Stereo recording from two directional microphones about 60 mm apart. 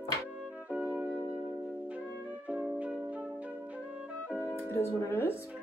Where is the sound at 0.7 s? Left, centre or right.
Right.